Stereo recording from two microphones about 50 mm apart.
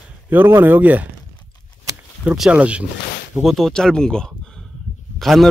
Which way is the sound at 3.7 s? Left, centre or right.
Centre.